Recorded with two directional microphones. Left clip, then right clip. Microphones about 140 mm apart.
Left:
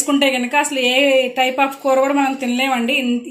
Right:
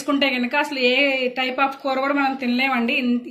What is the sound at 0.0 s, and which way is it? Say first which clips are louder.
A woman's voice: left 4 dB; 45° left (ahead or behind).